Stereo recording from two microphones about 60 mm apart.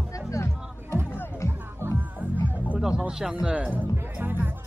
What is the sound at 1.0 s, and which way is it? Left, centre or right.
Music, left.